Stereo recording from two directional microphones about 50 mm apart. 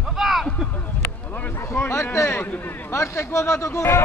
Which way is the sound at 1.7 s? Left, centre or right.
Left.